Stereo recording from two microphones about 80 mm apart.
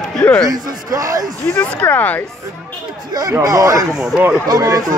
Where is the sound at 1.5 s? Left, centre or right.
Left.